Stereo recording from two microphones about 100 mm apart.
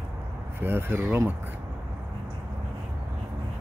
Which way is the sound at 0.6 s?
20° right (ahead or behind).